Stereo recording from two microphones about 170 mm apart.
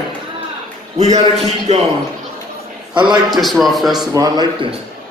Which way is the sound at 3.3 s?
Centre (ahead or behind).